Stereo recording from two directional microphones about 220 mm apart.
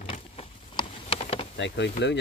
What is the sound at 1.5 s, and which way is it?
Speech, 55° left (ahead or behind).